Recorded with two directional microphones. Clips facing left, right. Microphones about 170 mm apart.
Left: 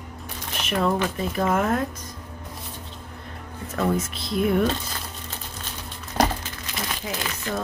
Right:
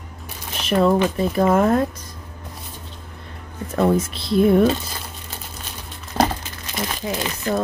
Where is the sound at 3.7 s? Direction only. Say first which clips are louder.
Right 6 dB; 30° right (ahead or behind).